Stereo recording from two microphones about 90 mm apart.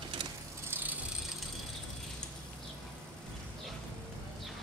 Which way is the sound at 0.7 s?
20° right (ahead or behind).